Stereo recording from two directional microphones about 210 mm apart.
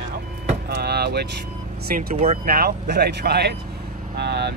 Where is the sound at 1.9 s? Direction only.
35° right (ahead or behind).